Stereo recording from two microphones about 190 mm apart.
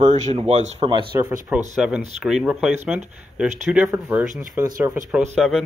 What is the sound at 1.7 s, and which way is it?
Speech, 5° right (ahead or behind).